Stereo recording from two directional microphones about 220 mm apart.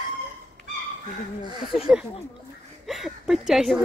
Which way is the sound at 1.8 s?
Centre (ahead or behind).